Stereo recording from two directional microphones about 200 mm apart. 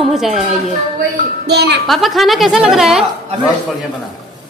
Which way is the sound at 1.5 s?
55° right (ahead or behind).